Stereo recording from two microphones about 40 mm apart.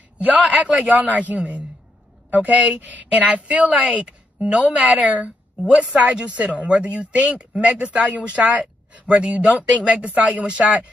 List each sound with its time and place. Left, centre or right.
0.2 s a woman's voice: right
3.9 s a sound: right
4.6 s a woman's voice: right
8.4 s speech: right
9.0 s a woman's voice: right